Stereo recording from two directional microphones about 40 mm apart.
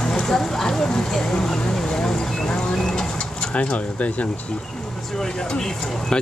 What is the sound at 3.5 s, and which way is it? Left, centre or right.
Speech, left.